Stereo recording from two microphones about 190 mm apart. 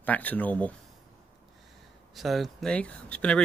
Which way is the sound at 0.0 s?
10° left (ahead or behind).